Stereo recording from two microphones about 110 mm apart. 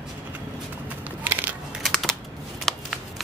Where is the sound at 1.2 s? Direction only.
15° right (ahead or behind).